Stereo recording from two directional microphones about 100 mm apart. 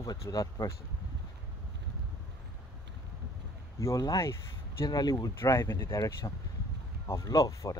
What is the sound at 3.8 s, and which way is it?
Speech, 35° left (ahead or behind).